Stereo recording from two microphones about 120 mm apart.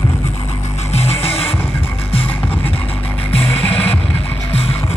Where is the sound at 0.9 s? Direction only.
60° left (ahead or behind).